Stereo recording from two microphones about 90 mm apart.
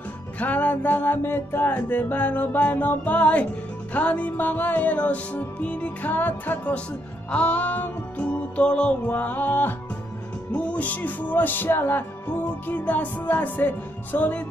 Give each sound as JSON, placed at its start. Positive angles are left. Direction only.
{"t": 0.4, "sound": "music", "side_deg": 15}